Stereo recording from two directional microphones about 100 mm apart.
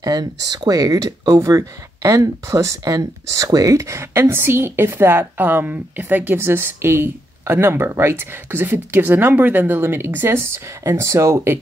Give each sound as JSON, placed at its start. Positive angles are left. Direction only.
{"t": 0.0, "sound": "speech", "side_deg": -40}